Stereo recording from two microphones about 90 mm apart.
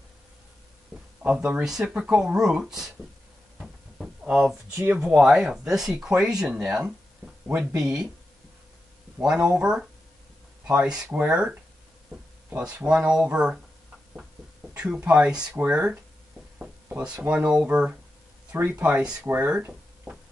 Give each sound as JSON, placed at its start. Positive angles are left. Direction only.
{"t": 0.9, "sound": "a sound", "side_deg": -20}
{"t": 1.2, "sound": "speech", "side_deg": -15}
{"t": 1.6, "sound": "speech", "side_deg": -5}
{"t": 3.5, "sound": "a sound", "side_deg": -5}
{"t": 4.9, "sound": "speech", "side_deg": -10}
{"t": 7.4, "sound": "speech", "side_deg": -20}
{"t": 7.7, "sound": "speech", "side_deg": -10}
{"t": 9.2, "sound": "speech", "side_deg": -10}
{"t": 14.8, "sound": "speech", "side_deg": -10}